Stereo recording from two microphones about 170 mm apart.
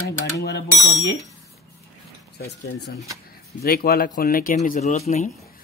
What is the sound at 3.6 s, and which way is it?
Speech, 65° left (ahead or behind).